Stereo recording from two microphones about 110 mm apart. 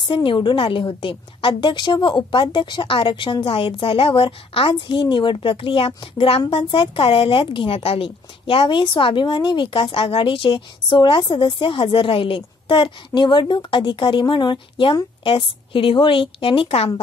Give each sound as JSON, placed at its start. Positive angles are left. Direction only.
{"t": 0.0, "sound": "a woman's voice", "side_deg": 50}